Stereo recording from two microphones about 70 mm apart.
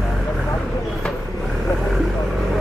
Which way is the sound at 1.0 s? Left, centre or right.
Centre.